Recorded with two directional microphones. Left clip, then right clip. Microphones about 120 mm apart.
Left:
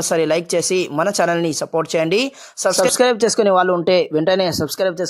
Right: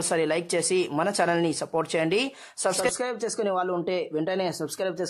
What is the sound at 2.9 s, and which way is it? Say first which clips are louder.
Speech: left 14 dB; 65° left (ahead or behind).